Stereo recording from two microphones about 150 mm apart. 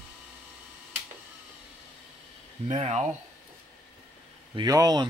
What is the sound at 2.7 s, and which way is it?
Speech, 50° right (ahead or behind).